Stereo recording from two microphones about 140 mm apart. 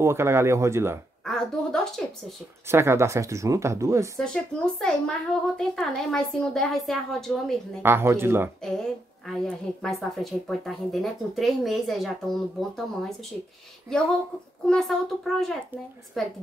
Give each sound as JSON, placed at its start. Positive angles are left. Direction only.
{"t": 0.0, "sound": "speech", "side_deg": -20}
{"t": 1.2, "sound": "a sound", "side_deg": 5}
{"t": 2.7, "sound": "speech", "side_deg": -20}
{"t": 4.2, "sound": "a woman's voice", "side_deg": 5}
{"t": 7.8, "sound": "speech", "side_deg": -15}
{"t": 8.6, "sound": "a woman's voice", "side_deg": 5}
{"t": 13.9, "sound": "a woman's voice", "side_deg": 5}